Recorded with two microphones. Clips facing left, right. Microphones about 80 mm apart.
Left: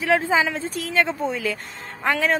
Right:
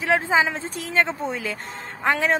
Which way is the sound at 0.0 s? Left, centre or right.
Right.